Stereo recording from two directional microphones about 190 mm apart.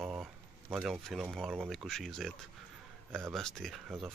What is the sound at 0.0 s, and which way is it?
Speech, centre (ahead or behind).